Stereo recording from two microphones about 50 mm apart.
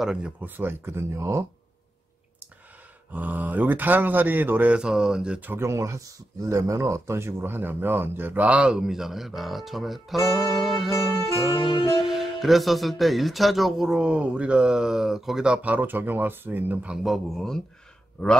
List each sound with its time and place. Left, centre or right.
0.0 s speech: centre
0.4 s speech: right
3.1 s speech: right
4.7 s speech: centre
5.6 s speech: right
7.5 s speech: right
8.4 s speech: right
8.7 s speech: centre
12.0 s speech: centre
14.0 s speech: right; by 15.4 s centre
15.4 s speech: centre
15.7 s speech: right
16.9 s speech: centre
17.3 s speech: centre